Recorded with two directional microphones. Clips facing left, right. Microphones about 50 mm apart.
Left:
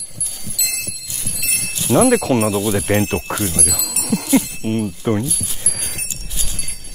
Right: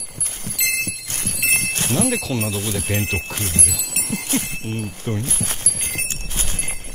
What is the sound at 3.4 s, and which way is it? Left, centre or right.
Speech, right.